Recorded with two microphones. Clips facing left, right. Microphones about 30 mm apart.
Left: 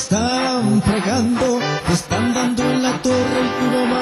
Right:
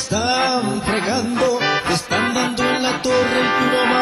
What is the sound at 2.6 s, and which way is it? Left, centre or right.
Music, centre.